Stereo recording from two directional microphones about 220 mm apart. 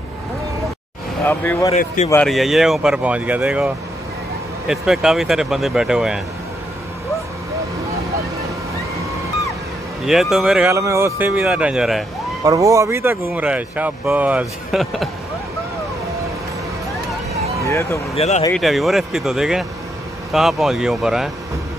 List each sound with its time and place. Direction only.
1.2 s speech: 10° left (ahead or behind)
1.7 s speech: 30° left (ahead or behind)
2.2 s speech: centre (ahead or behind)
10.0 s speech: centre (ahead or behind)
10.7 s speech: 15° right (ahead or behind)
12.4 s speech: 15° right (ahead or behind)
17.6 s speech: 10° left (ahead or behind)
18.1 s speech: 30° left (ahead or behind)
18.5 s speech: centre (ahead or behind)